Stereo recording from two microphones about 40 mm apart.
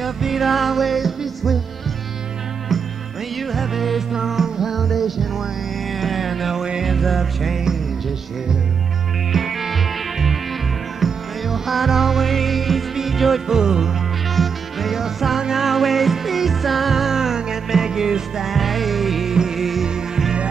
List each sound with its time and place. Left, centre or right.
0.0 s music: centre
2.7 s music: centre
6.5 s music: centre
6.8 s music: centre
9.3 s music: centre
14.3 s music: centre
18.5 s music: centre